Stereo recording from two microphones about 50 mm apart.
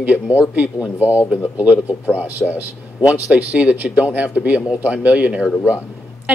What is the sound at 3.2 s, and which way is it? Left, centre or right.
Speech, right.